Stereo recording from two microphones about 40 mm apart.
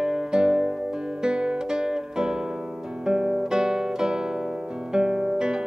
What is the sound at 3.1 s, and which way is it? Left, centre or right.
Guitar, centre.